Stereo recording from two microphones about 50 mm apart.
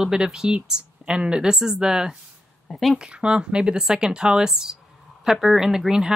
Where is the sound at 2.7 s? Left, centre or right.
Centre.